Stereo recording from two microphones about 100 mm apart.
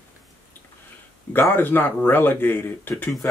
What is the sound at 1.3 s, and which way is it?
Speech, 20° left (ahead or behind).